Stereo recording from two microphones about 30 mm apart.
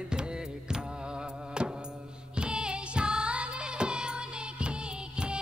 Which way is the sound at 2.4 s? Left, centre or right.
Right.